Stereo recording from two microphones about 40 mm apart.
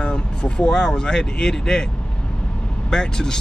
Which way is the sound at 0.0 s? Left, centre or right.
Left.